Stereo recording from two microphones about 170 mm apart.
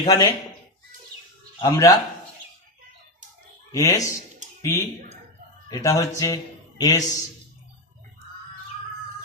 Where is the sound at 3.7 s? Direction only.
20° left (ahead or behind).